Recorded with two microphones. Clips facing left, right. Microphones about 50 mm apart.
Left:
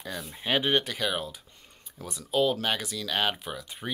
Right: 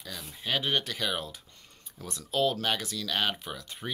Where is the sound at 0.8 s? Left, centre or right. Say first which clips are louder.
Left 2 dB; centre.